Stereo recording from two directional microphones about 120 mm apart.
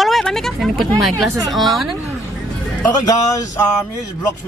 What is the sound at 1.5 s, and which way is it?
Speech, centre (ahead or behind).